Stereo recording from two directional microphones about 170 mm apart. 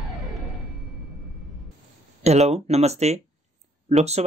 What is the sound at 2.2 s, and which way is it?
Speech, 40° right (ahead or behind).